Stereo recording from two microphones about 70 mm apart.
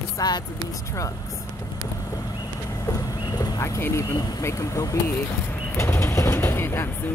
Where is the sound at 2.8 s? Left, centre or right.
Left.